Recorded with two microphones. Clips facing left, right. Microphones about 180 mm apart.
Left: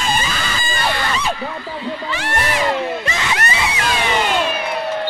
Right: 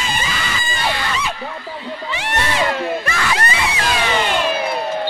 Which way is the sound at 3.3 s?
30° right (ahead or behind).